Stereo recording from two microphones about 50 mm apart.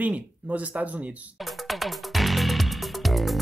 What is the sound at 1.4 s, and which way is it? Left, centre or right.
Music, centre.